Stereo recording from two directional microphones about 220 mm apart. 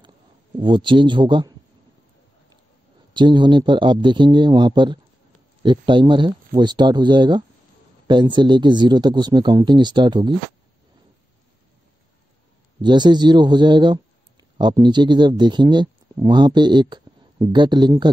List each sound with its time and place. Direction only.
0.6 s speech: 20° right (ahead or behind)
3.1 s speech: 20° right (ahead or behind)
12.8 s speech: 20° right (ahead or behind)